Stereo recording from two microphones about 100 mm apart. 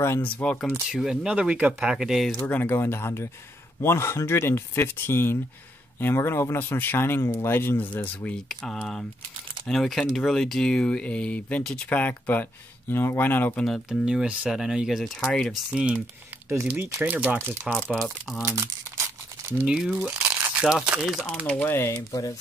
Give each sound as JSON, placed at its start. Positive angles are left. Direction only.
{"t": 0.2, "sound": "speech", "side_deg": 10}
{"t": 0.9, "sound": "speech", "side_deg": -5}
{"t": 2.4, "sound": "speech", "side_deg": 20}
{"t": 9.7, "sound": "speech", "side_deg": 0}
{"t": 13.6, "sound": "speech", "side_deg": 0}
{"t": 15.1, "sound": "speech", "side_deg": 10}
{"t": 15.5, "sound": "speech", "side_deg": -10}
{"t": 17.7, "sound": "speech", "side_deg": 10}
{"t": 19.6, "sound": "speech", "side_deg": -5}
{"t": 20.1, "sound": "crunch", "side_deg": -10}
{"t": 20.5, "sound": "speech", "side_deg": -5}
{"t": 21.5, "sound": "speech", "side_deg": 20}